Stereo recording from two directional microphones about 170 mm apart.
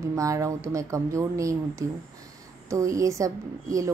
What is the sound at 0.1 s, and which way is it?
A woman's voice, 20° right (ahead or behind).